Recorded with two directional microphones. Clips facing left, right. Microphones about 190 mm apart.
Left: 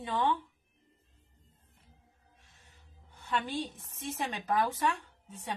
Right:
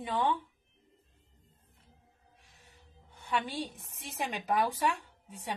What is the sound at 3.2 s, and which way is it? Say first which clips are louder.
Speech: even; 10° right (ahead or behind).